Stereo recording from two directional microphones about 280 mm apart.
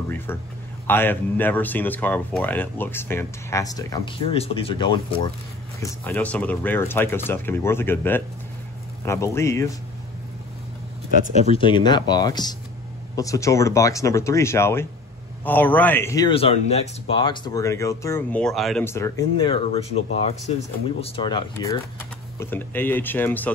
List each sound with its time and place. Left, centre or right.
0.8 s speech: centre
11.5 s speech: centre